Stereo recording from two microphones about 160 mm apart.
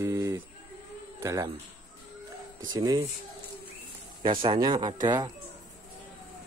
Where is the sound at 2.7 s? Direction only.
25° right (ahead or behind).